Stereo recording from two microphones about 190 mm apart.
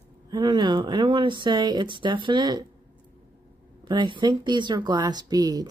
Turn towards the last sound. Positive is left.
turn(degrees=-20)  # may be behind; listen again after turning